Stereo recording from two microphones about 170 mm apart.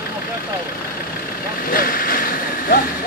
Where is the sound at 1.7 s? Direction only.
55° left (ahead or behind).